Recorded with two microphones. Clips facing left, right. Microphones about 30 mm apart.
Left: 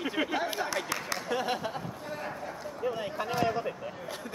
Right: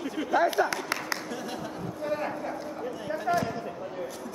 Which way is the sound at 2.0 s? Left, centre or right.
Centre.